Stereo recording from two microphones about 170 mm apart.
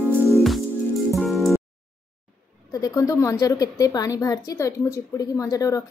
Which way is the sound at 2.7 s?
20° left (ahead or behind).